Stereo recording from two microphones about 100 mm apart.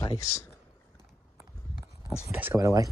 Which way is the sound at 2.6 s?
35° right (ahead or behind).